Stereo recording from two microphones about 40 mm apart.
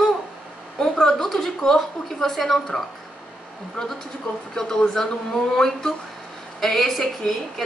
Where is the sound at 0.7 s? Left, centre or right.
Centre.